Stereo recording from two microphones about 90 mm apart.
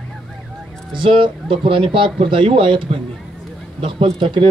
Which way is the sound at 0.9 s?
70° right (ahead or behind).